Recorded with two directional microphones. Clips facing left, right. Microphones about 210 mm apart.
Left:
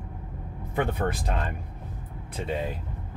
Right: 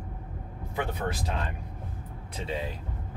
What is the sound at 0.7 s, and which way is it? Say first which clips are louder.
Speech: left 5 dB; 55° left (ahead or behind).